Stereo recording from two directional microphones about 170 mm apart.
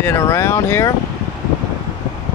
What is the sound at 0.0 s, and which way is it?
Speech, 15° left (ahead or behind).